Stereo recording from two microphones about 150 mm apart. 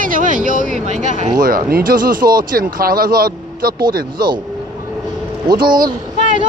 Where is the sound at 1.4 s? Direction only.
75° right (ahead or behind).